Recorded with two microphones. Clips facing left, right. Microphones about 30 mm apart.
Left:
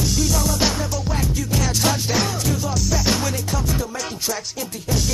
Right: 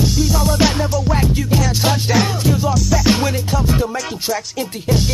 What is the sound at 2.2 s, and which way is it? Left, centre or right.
Music, centre.